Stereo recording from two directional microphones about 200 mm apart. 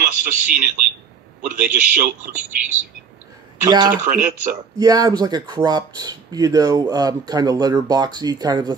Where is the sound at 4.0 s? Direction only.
45° right (ahead or behind).